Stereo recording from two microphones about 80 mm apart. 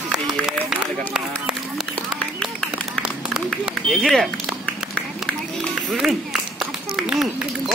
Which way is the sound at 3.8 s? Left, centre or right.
Centre.